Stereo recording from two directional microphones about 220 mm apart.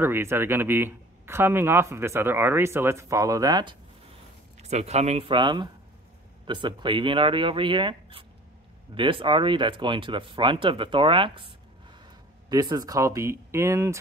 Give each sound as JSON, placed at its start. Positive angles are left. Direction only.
{"t": 0.0, "sound": "speech", "side_deg": -10}
{"t": 4.6, "sound": "speech", "side_deg": -30}